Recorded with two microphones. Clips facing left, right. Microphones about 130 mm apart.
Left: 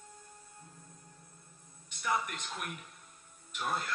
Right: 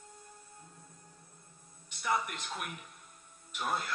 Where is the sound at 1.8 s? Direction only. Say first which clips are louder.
Right 1 dB; centre (ahead or behind).